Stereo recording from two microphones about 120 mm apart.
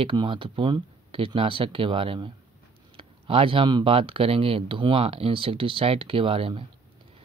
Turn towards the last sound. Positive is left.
turn(degrees=-50)  # may be behind; listen again after turning